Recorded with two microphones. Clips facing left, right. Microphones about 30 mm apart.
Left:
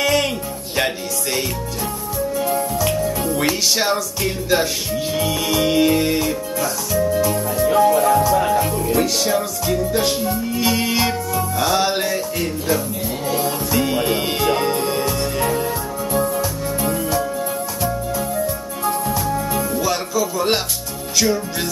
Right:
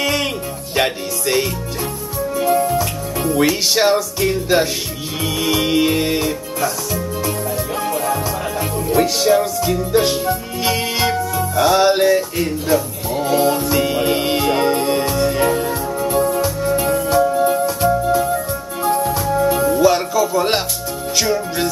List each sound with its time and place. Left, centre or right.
0.0 s music: centre
8.5 s music: centre
17.3 s music: right